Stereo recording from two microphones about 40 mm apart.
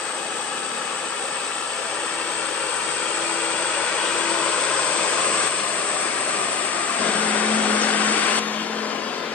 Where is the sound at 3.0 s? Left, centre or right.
Left.